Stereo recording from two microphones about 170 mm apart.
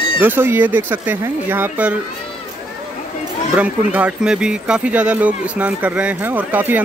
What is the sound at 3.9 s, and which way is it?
Speech, 5° right (ahead or behind).